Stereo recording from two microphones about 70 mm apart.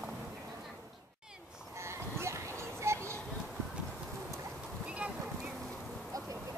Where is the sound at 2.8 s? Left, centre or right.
Right.